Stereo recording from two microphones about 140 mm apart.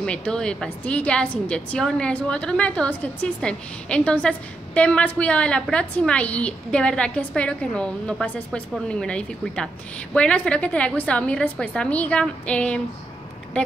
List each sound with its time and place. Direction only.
0.0 s a woman's voice: 5° left (ahead or behind)